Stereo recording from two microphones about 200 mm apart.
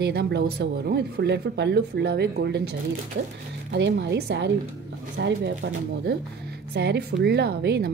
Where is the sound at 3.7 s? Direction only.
60° right (ahead or behind).